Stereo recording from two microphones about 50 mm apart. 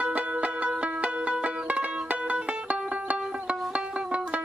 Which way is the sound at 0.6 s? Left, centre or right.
Right.